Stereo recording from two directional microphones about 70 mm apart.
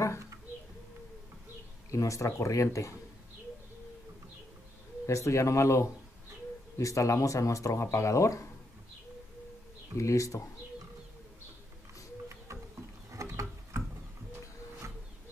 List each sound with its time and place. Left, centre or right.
1.9 s speech: left
5.0 s speech: left
9.9 s speech: left
13.1 s a sound: right